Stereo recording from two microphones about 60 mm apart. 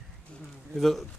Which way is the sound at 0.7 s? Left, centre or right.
Centre.